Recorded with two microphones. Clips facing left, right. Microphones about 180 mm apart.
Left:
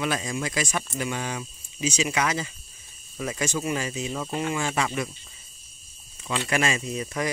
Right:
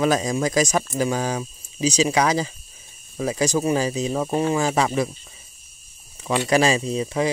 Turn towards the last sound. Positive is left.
turn(degrees=-25)  # may be behind; listen again after turning